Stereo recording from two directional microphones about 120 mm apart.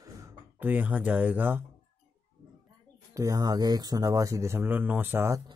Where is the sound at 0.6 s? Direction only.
15° right (ahead or behind).